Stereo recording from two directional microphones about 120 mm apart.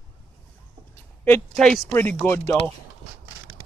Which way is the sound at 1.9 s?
15° left (ahead or behind).